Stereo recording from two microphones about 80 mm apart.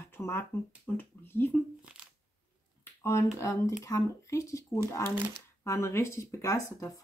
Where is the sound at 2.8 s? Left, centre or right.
Left.